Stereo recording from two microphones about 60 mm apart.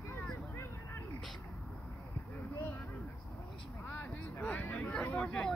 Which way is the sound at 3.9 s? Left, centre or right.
Left.